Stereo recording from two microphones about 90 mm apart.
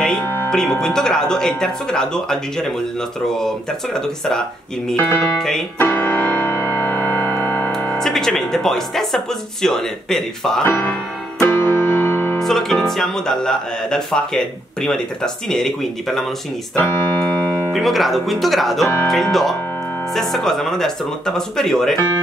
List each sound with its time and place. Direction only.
0.5 s speech: 5° left (ahead or behind)
4.9 s speech: 20° left (ahead or behind)
5.8 s music: 20° left (ahead or behind)
7.7 s speech: 10° left (ahead or behind)
10.6 s speech: 20° left (ahead or behind)
11.4 s music: 25° left (ahead or behind)
12.4 s speech: 5° left (ahead or behind)
17.7 s speech: centre (ahead or behind)